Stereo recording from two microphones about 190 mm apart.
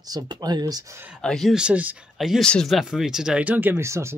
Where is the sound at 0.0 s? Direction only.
20° right (ahead or behind).